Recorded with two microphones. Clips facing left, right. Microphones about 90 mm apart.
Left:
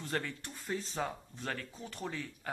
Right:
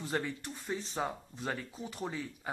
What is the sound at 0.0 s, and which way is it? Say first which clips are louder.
Speech: right 2 dB; 5° right (ahead or behind).